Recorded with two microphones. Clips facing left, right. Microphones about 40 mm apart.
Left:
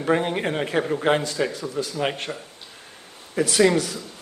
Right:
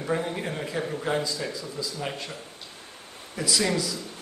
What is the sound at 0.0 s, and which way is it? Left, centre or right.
A man's voice, left.